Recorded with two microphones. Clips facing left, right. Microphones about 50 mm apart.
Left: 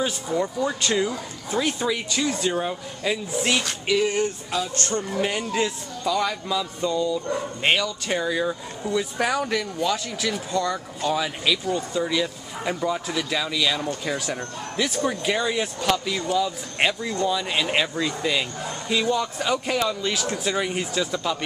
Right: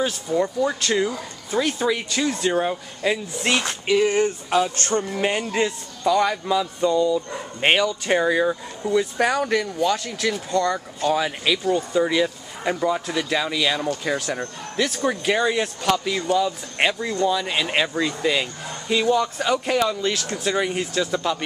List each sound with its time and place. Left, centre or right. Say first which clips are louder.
0.4 s speech: right 3 dB; centre
2.5 s speech: right 4 dB; centre
4.0 s speech: right 4 dB; right
4.5 s speech: right 5 dB; right
5.1 s speech: right 2 dB; centre
7.6 s speech: right 5 dB; centre
8.8 s speech: right 4 dB; centre
10.7 s speech: right 3 dB; centre
14.0 s speech: right 3 dB; centre